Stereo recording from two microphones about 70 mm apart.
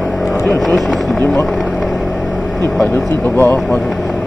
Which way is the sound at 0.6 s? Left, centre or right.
Centre.